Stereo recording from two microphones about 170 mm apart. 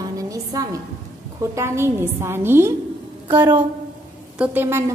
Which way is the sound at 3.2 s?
25° right (ahead or behind).